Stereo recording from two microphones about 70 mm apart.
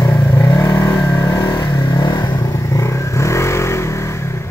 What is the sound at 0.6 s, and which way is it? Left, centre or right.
Vehicle, left.